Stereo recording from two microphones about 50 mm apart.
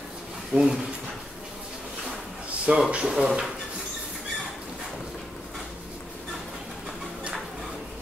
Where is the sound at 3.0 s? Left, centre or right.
Centre.